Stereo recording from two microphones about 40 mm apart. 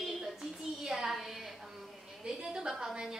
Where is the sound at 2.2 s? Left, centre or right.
Centre.